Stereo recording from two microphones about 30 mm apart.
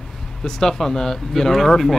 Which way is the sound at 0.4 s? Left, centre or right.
Centre.